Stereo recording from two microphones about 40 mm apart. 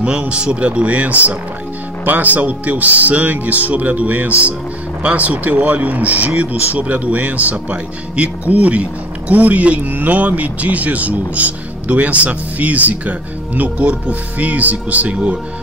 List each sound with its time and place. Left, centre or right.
0.0 s speech: right
9.8 s speech: right